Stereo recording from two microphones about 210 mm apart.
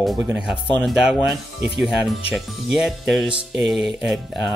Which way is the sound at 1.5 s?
55° right (ahead or behind).